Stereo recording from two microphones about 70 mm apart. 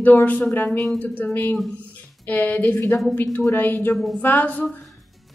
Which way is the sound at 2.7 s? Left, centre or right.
Left.